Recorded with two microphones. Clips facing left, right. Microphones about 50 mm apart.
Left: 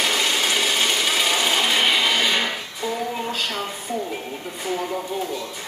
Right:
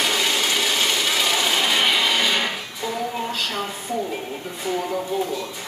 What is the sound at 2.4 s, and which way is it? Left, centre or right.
Music, centre.